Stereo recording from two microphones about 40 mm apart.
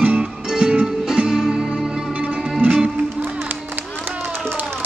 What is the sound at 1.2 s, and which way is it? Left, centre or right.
Music, centre.